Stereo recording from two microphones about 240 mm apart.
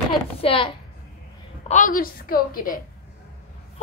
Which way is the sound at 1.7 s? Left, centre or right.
Left.